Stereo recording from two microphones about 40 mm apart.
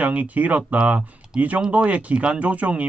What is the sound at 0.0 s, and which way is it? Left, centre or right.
Speech, right.